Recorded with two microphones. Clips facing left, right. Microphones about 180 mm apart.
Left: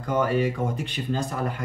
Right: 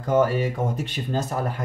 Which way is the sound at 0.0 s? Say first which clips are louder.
Right 3 dB; 45° right (ahead or behind).